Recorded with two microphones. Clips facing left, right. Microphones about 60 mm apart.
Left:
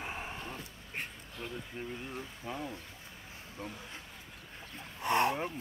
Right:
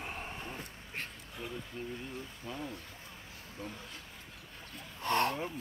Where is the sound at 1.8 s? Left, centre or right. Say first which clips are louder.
Left 2 dB; left.